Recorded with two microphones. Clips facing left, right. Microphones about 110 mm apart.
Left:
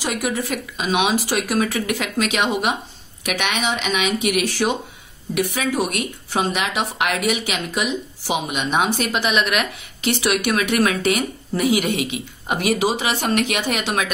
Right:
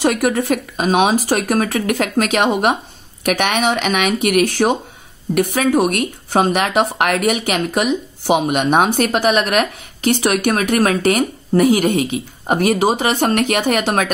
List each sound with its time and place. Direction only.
0.0 s speech: 55° right (ahead or behind)